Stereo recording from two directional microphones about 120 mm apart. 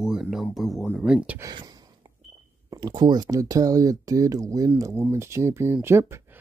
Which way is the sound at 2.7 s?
35° right (ahead or behind).